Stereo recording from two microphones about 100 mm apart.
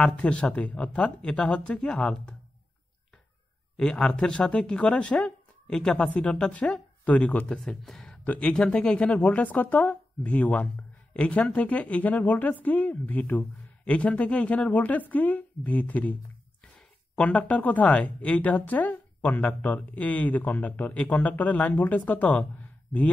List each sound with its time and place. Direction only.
0.0 s speech: 10° left (ahead or behind)
3.7 s speech: 5° left (ahead or behind)
7.5 s speech: 5° left (ahead or behind)
17.2 s speech: 15° left (ahead or behind)